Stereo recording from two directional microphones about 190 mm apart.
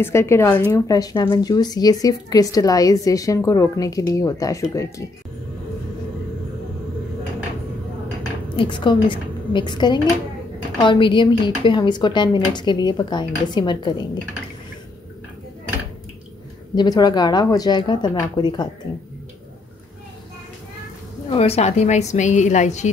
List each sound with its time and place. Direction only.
0.0 s speech: 15° left (ahead or behind)
8.5 s a woman's voice: 25° left (ahead or behind)
16.7 s speech: 20° left (ahead or behind)
21.3 s a woman's voice: 30° left (ahead or behind)